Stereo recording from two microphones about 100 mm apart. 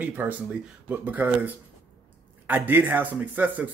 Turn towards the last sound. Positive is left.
turn(degrees=-15)  # may be behind; listen again after turning